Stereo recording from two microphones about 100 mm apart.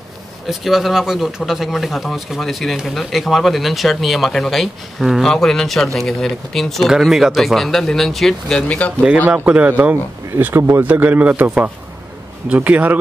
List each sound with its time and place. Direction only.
0.5 s speech: 5° right (ahead or behind); by 8.9 s 15° left (ahead or behind)
9.3 s speech: 10° right (ahead or behind)